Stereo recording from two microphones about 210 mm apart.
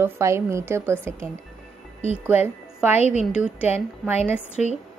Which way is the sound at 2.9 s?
30° left (ahead or behind).